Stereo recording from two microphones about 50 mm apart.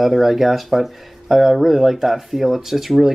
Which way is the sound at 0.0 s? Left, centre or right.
Centre.